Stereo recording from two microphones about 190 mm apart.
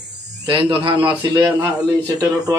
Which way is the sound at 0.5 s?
25° right (ahead or behind).